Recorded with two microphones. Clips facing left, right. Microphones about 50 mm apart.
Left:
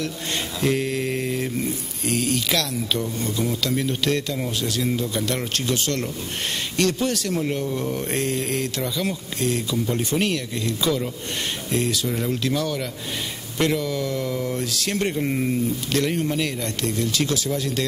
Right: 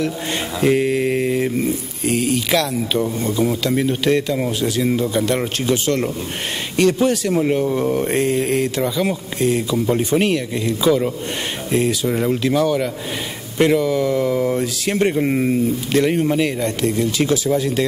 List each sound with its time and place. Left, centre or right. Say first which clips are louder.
0.6 s speech: right 7 dB; centre